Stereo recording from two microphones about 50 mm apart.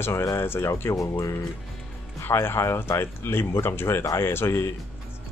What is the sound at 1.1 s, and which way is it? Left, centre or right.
Speech, left.